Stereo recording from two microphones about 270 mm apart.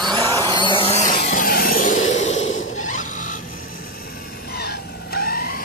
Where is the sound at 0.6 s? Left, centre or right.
Centre.